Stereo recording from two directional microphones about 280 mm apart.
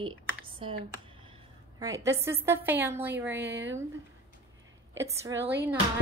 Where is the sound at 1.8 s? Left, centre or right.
Centre.